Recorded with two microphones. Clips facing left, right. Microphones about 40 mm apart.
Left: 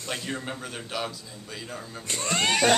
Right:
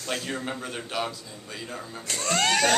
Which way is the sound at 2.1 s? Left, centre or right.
Left.